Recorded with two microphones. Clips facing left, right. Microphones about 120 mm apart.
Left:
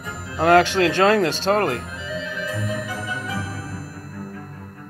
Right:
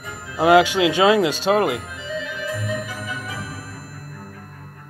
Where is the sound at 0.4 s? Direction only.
5° right (ahead or behind).